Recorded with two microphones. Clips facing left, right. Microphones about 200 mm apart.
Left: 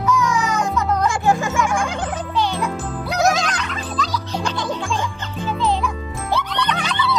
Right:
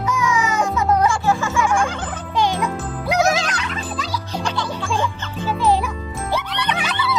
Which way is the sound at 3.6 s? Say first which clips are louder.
Left 1 dB; 5° right (ahead or behind).